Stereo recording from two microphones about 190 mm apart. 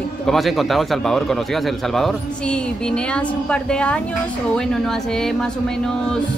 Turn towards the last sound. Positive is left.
turn(degrees=5)  # may be behind; listen again after turning